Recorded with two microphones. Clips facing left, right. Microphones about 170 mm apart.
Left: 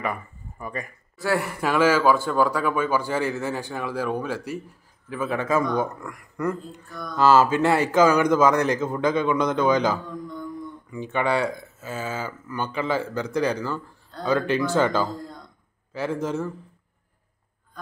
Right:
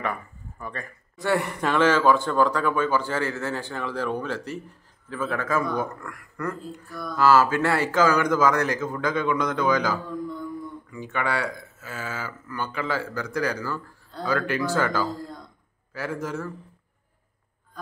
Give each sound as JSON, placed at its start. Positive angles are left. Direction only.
{"t": 0.0, "sound": "speech", "side_deg": 10}